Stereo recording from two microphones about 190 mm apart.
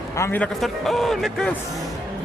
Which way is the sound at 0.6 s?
Centre (ahead or behind).